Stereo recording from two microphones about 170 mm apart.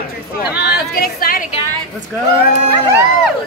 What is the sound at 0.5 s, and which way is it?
Speech, 65° left (ahead or behind).